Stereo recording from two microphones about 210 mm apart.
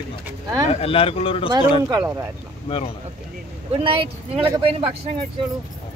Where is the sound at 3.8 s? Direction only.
25° right (ahead or behind).